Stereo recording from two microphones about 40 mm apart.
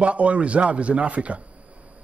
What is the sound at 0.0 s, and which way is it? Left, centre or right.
A man's voice, right.